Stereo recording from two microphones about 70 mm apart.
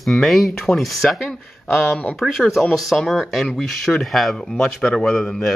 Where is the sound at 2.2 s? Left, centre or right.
Centre.